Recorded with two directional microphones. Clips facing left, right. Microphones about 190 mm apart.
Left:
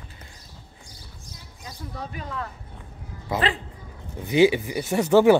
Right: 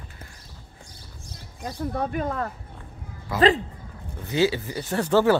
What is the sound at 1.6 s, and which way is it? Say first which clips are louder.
Speech: right 9 dB; 55° right (ahead or behind).